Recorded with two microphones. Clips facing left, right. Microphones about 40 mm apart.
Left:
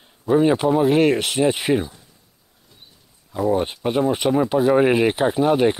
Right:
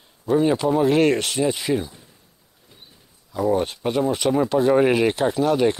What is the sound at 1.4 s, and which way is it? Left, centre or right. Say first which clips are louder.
Speech: left 3 dB; left.